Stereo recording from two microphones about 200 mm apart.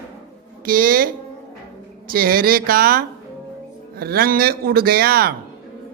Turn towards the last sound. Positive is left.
turn(degrees=-50)  # may be behind; listen again after turning